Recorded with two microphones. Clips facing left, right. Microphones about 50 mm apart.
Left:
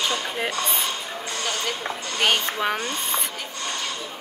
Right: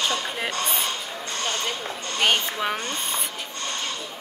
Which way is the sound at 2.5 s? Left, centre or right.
Left.